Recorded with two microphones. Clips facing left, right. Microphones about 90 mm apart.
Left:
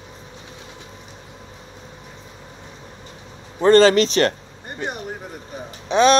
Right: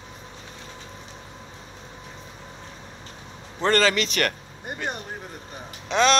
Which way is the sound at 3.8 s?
35° left (ahead or behind).